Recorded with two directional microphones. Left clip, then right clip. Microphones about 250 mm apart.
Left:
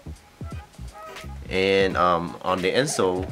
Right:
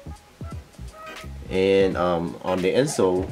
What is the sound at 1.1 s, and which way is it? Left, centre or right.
Speech, centre.